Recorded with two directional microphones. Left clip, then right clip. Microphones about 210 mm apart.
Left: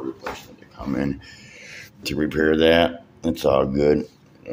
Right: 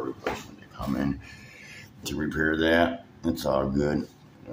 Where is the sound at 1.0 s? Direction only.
20° left (ahead or behind).